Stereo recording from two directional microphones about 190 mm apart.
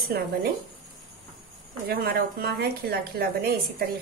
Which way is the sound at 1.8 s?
55° right (ahead or behind).